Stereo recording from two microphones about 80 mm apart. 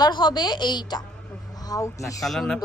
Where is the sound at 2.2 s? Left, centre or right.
Centre.